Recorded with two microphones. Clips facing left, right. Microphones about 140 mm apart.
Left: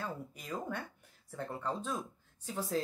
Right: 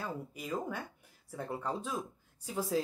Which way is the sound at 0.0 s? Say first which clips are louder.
Right 2 dB; 5° right (ahead or behind).